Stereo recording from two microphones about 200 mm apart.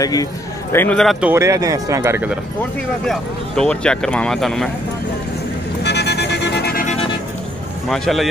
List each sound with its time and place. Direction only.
0.0 s a man's voice: 20° left (ahead or behind); by 1.3 s centre (ahead or behind)
1.3 s speech: 15° right (ahead or behind)
3.1 s speech: 5° left (ahead or behind)
5.9 s vehicle: 60° left (ahead or behind)
7.9 s speech: centre (ahead or behind)